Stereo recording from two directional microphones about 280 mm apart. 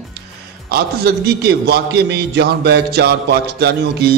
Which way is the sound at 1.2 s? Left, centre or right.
Right.